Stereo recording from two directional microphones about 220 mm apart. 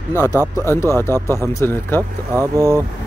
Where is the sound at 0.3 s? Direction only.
10° right (ahead or behind).